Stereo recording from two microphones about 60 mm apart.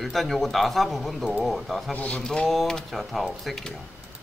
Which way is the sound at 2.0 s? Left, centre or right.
Left.